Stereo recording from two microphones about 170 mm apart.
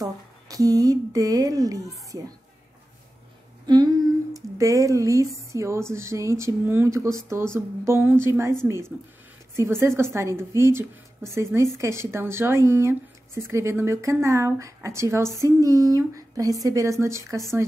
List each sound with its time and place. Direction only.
0.0 s a woman's voice: 20° right (ahead or behind)
3.6 s speech: 25° right (ahead or behind)
9.6 s a woman's voice: 15° right (ahead or behind)